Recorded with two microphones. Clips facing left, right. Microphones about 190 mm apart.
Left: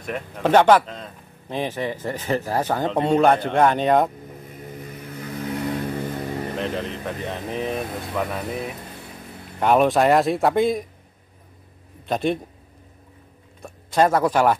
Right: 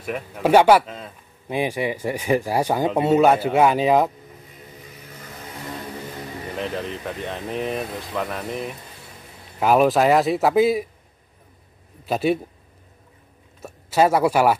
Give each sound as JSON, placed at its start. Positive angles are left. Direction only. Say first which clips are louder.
{"t": 0.0, "sound": "speech", "louder": "right 1 dB", "side_deg": -5}
{"t": 4.8, "sound": "vehicle", "louder": "left 8 dB", "side_deg": 55}
{"t": 6.6, "sound": "speech", "louder": "left 1 dB", "side_deg": 0}
{"t": 12.1, "sound": "speech", "louder": "right 2 dB", "side_deg": -5}
{"t": 13.6, "sound": "speech", "louder": "right 1 dB", "side_deg": -5}